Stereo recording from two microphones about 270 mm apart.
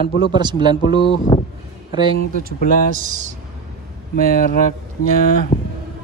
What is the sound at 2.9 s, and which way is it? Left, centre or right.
Speech, right.